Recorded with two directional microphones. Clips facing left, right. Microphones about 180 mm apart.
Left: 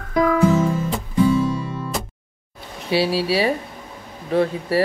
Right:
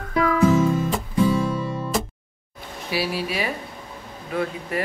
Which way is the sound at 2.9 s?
30° left (ahead or behind).